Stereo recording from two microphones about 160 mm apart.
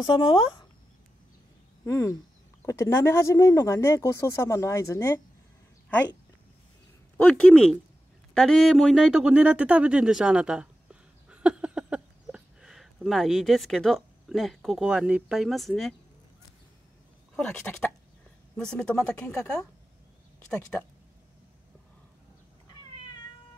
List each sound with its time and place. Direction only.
0.0 s speech: 30° left (ahead or behind)
1.9 s speech: 20° left (ahead or behind)
7.2 s speech: 10° left (ahead or behind)
17.4 s speech: 5° left (ahead or behind)